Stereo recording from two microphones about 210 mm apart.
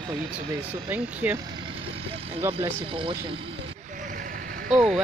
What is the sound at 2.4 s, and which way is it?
Speech, 10° right (ahead or behind).